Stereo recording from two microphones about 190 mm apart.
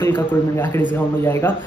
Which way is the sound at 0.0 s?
10° left (ahead or behind).